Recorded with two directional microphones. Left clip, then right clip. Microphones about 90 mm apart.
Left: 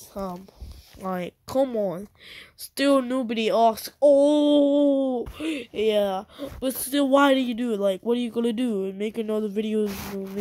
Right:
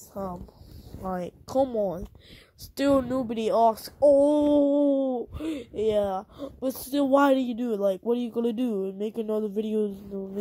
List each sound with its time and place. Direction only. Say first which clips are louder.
0.2 s speech: left 2 dB; 45° right (ahead or behind)
1.1 s speech: left 1 dB; 25° right (ahead or behind); by 9.8 s 50° right (ahead or behind)